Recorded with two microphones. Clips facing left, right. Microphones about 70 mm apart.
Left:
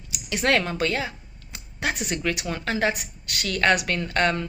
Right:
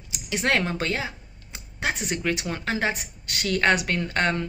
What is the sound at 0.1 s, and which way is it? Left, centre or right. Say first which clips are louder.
Speech: left 2 dB; right.